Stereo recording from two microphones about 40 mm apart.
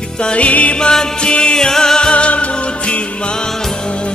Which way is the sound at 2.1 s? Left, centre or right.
Left.